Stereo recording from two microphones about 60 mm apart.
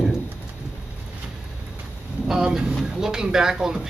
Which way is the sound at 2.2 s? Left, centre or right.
Centre.